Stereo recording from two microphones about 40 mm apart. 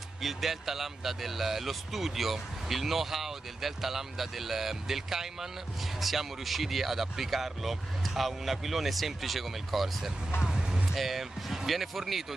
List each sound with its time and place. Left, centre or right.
0.2 s speech: centre
10.4 s music: centre
11.0 s speech: centre